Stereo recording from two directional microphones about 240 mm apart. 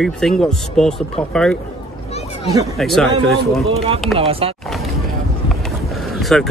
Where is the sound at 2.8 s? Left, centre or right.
Centre.